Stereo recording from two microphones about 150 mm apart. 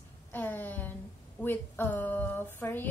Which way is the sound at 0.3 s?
15° left (ahead or behind).